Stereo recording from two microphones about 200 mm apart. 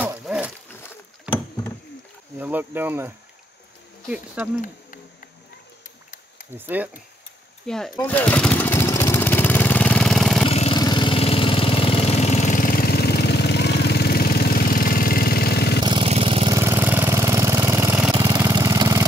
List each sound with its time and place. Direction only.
0.0 s a sound: 5° right (ahead or behind)
2.4 s speech: 10° right (ahead or behind)
6.5 s speech: 10° right (ahead or behind)
7.6 s speech: centre (ahead or behind)
7.9 s lawn mower: 10° left (ahead or behind)
10.4 s vehicle: 25° left (ahead or behind); by 15.8 s 55° left (ahead or behind)
15.8 s vehicle: 25° right (ahead or behind)
16.5 s engine: 10° right (ahead or behind)